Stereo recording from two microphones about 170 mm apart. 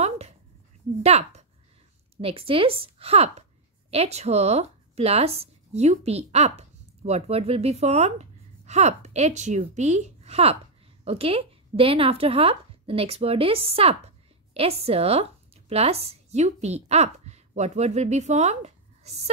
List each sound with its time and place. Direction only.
1.0 s a woman's voice: 40° right (ahead or behind)